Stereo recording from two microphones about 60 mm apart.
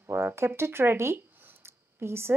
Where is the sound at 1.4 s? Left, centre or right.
Right.